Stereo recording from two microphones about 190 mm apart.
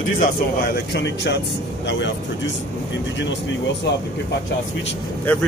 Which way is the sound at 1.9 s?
75° left (ahead or behind).